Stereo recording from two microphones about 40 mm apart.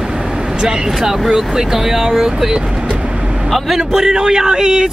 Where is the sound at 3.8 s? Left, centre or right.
Centre.